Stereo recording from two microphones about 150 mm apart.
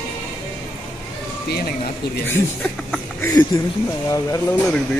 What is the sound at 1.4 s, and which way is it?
Speech, 90° left.